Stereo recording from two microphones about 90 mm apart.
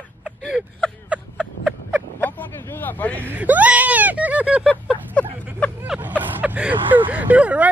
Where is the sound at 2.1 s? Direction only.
25° left (ahead or behind).